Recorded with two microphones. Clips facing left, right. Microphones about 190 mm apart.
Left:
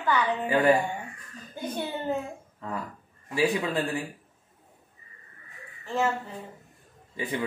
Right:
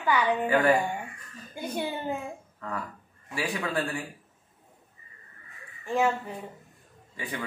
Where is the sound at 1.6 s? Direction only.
10° right (ahead or behind).